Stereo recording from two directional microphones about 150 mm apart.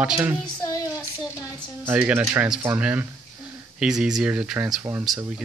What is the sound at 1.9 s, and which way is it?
Speech, 10° right (ahead or behind).